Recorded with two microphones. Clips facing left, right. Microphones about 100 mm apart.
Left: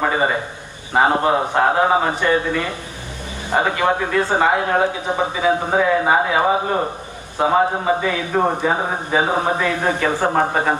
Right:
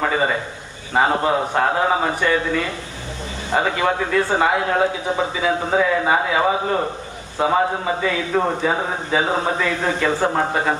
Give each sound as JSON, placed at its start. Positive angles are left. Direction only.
{"t": 0.0, "sound": "a man's voice", "side_deg": 30}
{"t": 4.4, "sound": "a man's voice", "side_deg": 30}
{"t": 5.1, "sound": "a man's voice", "side_deg": 20}